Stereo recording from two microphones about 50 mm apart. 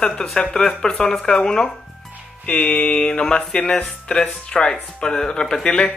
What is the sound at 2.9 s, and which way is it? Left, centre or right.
Speech, centre.